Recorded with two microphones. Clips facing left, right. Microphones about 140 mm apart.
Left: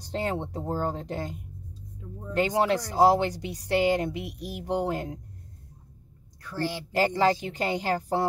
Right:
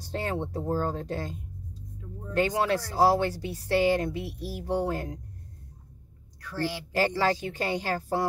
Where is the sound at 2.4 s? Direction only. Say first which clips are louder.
Left 1 dB; 20° left (ahead or behind).